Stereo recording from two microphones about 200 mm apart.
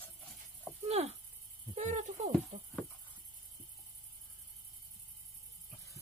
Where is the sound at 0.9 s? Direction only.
35° right (ahead or behind).